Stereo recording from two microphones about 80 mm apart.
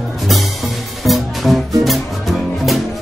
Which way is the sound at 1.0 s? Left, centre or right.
Centre.